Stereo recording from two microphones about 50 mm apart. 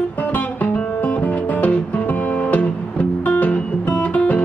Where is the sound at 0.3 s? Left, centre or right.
Left.